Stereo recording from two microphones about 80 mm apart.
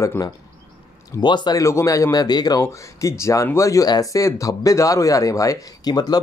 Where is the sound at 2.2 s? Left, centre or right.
Left.